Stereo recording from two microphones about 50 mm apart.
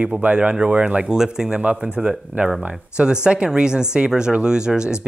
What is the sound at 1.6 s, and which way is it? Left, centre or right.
Speech, right.